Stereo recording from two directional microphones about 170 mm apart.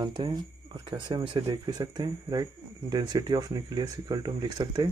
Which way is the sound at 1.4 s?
20° right (ahead or behind).